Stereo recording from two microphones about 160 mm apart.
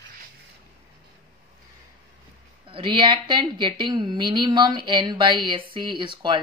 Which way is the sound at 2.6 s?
30° right (ahead or behind).